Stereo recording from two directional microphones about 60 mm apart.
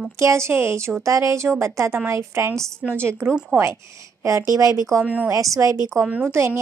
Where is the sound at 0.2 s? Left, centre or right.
Right.